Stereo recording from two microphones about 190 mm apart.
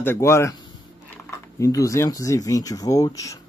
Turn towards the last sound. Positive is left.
turn(degrees=15)  # may be behind; listen again after turning